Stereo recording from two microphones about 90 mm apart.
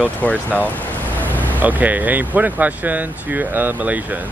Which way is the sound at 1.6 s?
20° right (ahead or behind).